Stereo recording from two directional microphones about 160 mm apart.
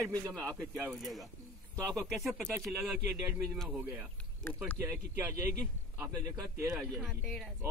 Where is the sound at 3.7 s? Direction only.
10° right (ahead or behind).